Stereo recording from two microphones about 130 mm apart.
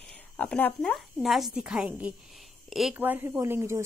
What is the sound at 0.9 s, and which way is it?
A woman's voice, centre (ahead or behind).